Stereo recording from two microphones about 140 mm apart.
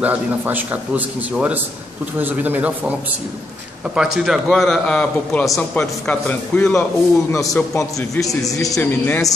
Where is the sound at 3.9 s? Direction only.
5° right (ahead or behind).